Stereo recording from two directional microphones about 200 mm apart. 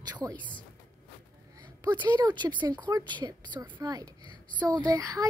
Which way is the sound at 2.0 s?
20° right (ahead or behind).